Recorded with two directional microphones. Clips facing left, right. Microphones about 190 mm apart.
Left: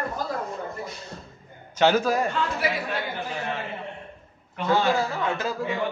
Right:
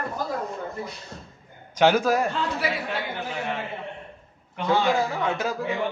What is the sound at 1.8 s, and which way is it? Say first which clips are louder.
Speech: right 1 dB; 10° right (ahead or behind).